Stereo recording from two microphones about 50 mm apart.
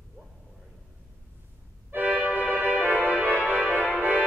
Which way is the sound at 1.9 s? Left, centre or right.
Right.